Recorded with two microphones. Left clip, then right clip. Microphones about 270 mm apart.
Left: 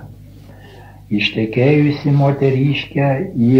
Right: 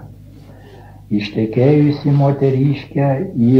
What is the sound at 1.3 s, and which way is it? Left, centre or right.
Speech, left.